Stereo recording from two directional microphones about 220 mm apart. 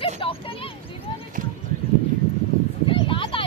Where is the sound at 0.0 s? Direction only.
25° left (ahead or behind).